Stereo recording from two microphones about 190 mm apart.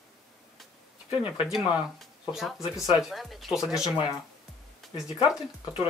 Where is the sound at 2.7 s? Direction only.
15° left (ahead or behind).